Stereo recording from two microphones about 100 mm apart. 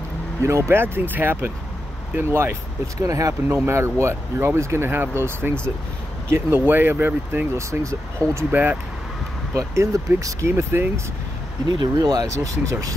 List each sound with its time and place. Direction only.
0.4 s speech: 30° right (ahead or behind)
8.4 s speech: 20° right (ahead or behind)
9.6 s speech: 30° right (ahead or behind)
11.7 s speech: 45° right (ahead or behind)